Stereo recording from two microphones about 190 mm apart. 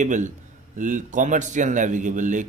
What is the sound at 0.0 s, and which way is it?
A man's voice, 40° right (ahead or behind).